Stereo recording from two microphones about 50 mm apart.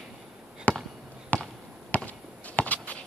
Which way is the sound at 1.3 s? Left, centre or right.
Left.